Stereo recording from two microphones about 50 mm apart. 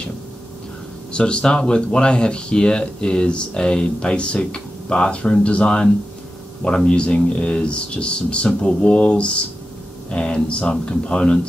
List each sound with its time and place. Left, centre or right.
1.1 s speech: centre